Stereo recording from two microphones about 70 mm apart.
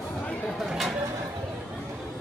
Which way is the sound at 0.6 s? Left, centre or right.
Centre.